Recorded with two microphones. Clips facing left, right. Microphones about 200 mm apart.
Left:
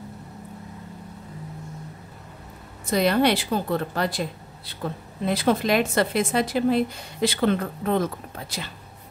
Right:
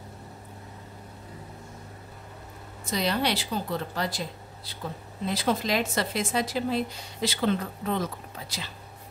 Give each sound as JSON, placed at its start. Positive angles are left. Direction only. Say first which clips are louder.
{"t": 2.8, "sound": "speech", "louder": "left 7 dB", "side_deg": 55}
{"t": 5.2, "sound": "speech", "louder": "left 5 dB", "side_deg": 55}